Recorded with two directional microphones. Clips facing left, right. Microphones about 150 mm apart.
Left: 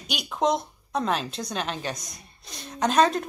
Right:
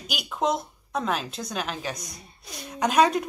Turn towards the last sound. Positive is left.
turn(degrees=-10)  # may be behind; listen again after turning